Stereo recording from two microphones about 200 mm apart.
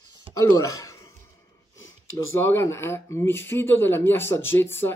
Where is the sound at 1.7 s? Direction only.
15° left (ahead or behind).